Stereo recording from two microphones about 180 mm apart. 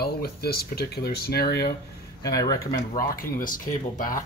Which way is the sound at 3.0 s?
50° left (ahead or behind).